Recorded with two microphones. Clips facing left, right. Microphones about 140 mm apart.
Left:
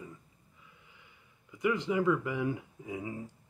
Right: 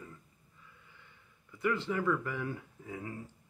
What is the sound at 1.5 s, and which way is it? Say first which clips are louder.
Speech: left 3 dB; 15° left (ahead or behind).